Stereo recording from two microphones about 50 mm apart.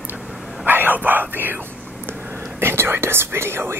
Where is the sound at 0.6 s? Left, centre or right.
Right.